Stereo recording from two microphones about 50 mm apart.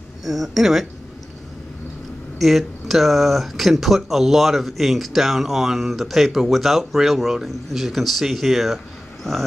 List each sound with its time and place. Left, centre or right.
0.2 s speech: centre
2.3 s speech: centre